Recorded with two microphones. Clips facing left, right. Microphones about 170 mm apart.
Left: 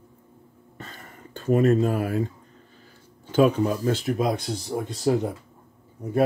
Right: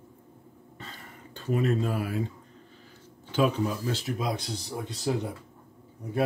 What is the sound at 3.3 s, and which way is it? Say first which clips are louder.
Speech: left 6 dB; 45° left (ahead or behind).